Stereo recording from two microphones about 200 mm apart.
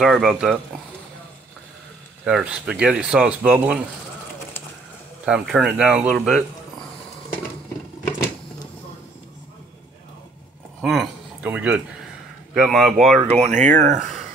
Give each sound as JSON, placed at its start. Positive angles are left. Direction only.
{"t": 0.0, "sound": "speech", "side_deg": 0}
{"t": 2.2, "sound": "speech", "side_deg": -5}
{"t": 5.2, "sound": "speech", "side_deg": 0}
{"t": 10.8, "sound": "a sound", "side_deg": 0}
{"t": 12.5, "sound": "speech", "side_deg": 0}
{"t": 13.3, "sound": "speech", "side_deg": -35}